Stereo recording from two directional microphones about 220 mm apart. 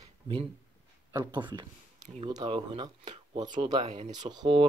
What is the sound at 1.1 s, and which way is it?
Speech, 20° right (ahead or behind).